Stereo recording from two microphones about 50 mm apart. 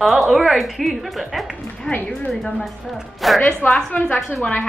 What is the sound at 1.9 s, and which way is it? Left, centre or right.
A woman's voice, centre.